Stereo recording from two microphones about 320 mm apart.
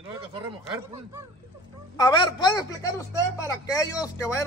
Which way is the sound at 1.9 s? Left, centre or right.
Centre.